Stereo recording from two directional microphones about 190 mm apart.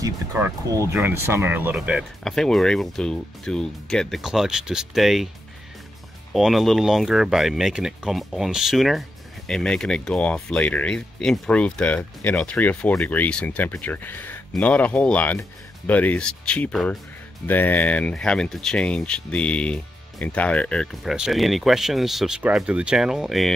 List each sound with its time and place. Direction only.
0.0 s speech: 15° right (ahead or behind)
6.3 s speech: centre (ahead or behind)